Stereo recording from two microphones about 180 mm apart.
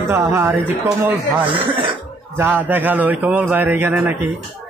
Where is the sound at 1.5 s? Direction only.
30° right (ahead or behind).